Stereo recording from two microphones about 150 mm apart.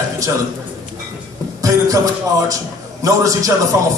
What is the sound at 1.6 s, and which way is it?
Speech, 25° right (ahead or behind).